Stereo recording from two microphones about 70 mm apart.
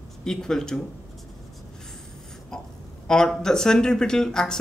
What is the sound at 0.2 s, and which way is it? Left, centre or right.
Speech, centre.